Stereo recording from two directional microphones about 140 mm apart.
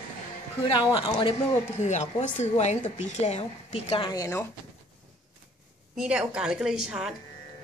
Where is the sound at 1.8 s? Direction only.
55° left (ahead or behind).